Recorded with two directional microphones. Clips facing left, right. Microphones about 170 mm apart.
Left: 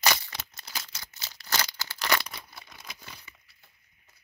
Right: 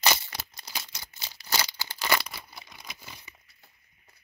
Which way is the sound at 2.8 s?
10° right (ahead or behind).